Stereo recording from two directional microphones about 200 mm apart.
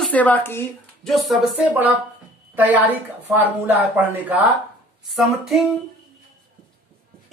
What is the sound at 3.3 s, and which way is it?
Speech, 10° right (ahead or behind).